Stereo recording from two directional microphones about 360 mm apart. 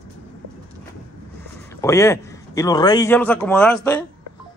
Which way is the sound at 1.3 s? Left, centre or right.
Centre.